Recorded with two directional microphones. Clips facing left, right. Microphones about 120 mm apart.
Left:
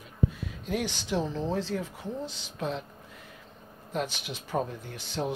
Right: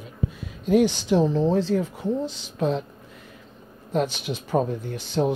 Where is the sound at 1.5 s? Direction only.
40° right (ahead or behind).